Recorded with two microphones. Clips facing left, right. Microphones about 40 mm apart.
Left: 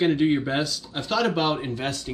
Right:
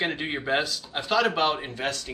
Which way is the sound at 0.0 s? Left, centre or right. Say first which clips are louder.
Left 8 dB; centre.